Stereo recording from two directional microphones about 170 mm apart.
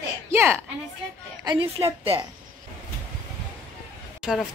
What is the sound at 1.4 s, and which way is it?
Speech, 30° right (ahead or behind).